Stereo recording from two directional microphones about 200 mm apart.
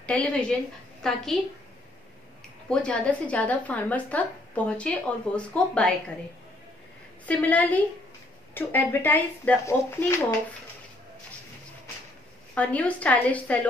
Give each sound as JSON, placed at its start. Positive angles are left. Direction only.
{"t": 0.0, "sound": "speech", "side_deg": 5}
{"t": 2.7, "sound": "speech", "side_deg": 5}
{"t": 7.2, "sound": "speech", "side_deg": 5}
{"t": 12.5, "sound": "speech", "side_deg": 5}